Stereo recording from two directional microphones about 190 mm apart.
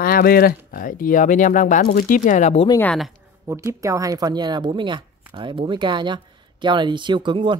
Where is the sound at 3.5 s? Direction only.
15° right (ahead or behind).